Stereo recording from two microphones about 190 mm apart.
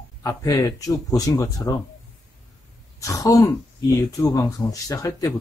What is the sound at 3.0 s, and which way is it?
Speech, 15° left (ahead or behind).